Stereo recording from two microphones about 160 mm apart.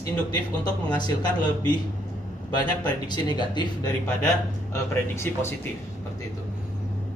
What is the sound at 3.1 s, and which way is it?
Speech, 30° left (ahead or behind).